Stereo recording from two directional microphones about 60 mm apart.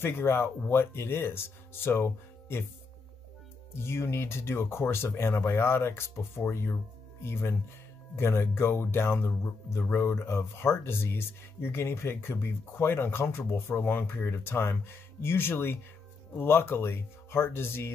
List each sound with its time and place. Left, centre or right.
0.0 s speech: left
3.8 s speech: left